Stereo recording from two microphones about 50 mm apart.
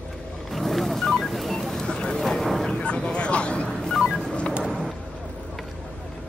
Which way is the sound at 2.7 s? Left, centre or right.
Left.